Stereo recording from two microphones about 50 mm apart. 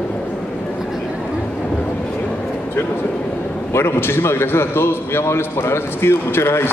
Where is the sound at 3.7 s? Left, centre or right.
Left.